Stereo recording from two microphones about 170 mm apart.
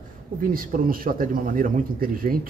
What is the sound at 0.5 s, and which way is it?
Speech, 55° right (ahead or behind).